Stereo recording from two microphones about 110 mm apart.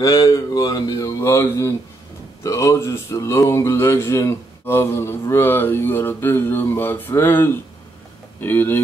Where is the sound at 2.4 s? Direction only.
30° left (ahead or behind).